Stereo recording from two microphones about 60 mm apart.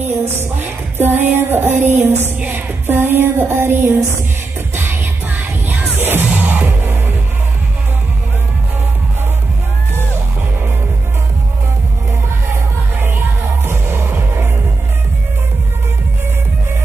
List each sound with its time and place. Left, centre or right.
0.0 s music: right
13.7 s music: right